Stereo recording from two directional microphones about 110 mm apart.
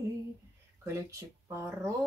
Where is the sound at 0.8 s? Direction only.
25° right (ahead or behind).